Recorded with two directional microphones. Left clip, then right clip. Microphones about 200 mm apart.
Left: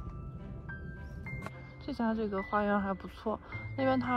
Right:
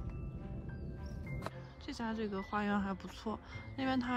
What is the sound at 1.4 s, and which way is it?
Speech, 5° right (ahead or behind).